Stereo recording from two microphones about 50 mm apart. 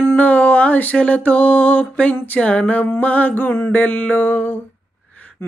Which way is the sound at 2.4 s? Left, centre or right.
Left.